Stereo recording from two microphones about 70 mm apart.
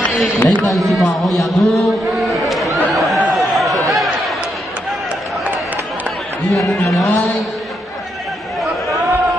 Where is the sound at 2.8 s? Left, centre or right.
Centre.